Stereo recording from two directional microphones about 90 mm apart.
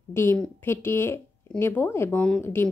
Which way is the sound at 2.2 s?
10° left (ahead or behind).